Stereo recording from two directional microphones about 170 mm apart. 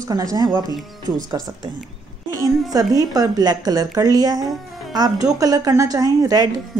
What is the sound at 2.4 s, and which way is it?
Speech, 20° right (ahead or behind).